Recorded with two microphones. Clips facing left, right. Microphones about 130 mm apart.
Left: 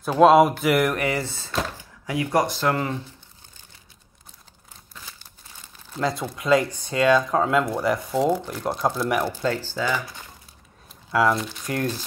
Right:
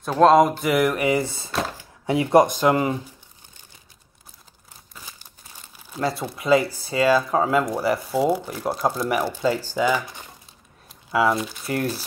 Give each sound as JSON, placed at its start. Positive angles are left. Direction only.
{"t": 0.0, "sound": "speech", "side_deg": 5}
{"t": 1.0, "sound": "speech", "side_deg": -15}
{"t": 2.0, "sound": "speech", "side_deg": -25}
{"t": 4.9, "sound": "crumpling", "side_deg": -15}
{"t": 5.9, "sound": "speech", "side_deg": -5}
{"t": 11.1, "sound": "speech", "side_deg": 0}